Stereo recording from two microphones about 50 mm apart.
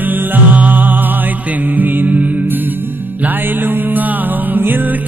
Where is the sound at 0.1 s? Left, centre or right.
Right.